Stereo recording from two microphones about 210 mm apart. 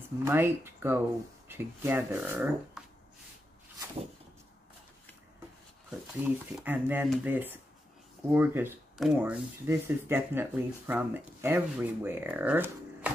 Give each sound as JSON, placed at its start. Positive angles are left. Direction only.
{"t": 0.2, "sound": "speech", "side_deg": -10}
{"t": 5.9, "sound": "speech", "side_deg": -10}